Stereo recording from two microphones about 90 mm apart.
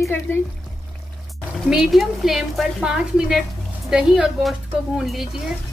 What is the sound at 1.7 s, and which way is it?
Speech, 5° right (ahead or behind).